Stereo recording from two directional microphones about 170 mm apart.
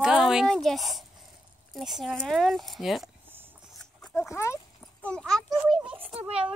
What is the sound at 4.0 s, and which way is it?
Dog, 5° left (ahead or behind).